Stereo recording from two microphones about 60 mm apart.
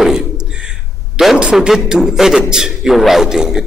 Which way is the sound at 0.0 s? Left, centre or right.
Centre.